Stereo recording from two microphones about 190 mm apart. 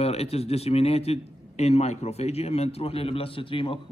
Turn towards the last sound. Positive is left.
turn(degrees=25)  # may be behind; listen again after turning